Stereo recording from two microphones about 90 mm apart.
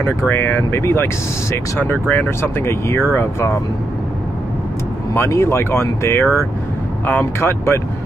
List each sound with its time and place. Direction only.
0.3 s speech: 25° left (ahead or behind)
5.1 s speech: 30° left (ahead or behind)